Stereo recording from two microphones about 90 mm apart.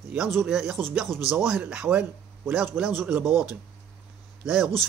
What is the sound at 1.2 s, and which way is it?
Speech, 10° right (ahead or behind).